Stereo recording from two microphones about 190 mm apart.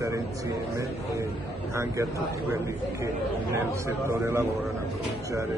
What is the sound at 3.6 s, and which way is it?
Speech, 15° right (ahead or behind).